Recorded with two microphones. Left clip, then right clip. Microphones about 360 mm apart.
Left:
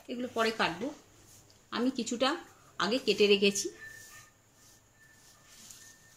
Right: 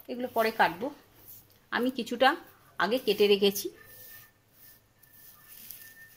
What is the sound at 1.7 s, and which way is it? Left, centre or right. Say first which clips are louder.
Speech: right 3 dB; right.